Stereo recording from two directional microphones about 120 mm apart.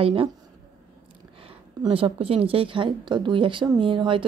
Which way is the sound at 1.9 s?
50° right (ahead or behind).